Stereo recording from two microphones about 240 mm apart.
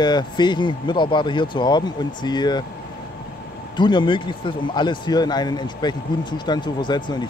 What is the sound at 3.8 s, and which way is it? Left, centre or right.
Speech, centre.